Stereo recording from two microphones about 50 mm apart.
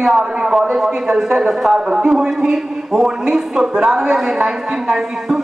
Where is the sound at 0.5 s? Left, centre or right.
Centre.